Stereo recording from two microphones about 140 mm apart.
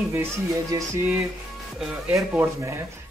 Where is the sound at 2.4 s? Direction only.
20° right (ahead or behind).